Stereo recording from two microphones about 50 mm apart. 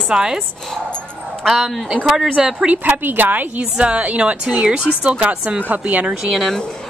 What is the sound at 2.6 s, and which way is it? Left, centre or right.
Speech, right.